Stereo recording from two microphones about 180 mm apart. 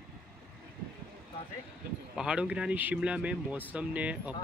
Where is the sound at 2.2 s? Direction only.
5° right (ahead or behind).